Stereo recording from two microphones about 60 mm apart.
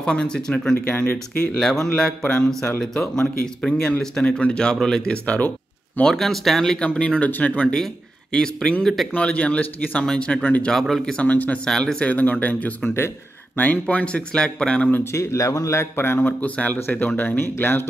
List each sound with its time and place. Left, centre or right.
0.0 s speech: centre
6.0 s speech: centre
6.9 s speech: left
7.7 s speech: centre
8.8 s speech: centre
9.1 s speech: left
10.4 s speech: left
10.7 s speech: centre
11.1 s speech: left
11.6 s speech: centre
15.1 s speech: left
15.8 s speech: left
16.3 s speech: left